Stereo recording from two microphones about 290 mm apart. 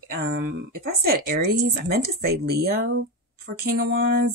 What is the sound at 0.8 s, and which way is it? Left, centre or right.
Speech, right.